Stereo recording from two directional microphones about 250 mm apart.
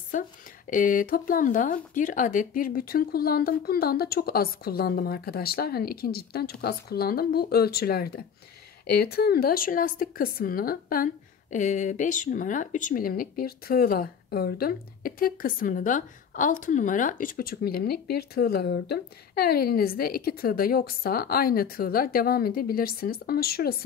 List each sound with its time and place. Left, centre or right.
0.1 s speech: left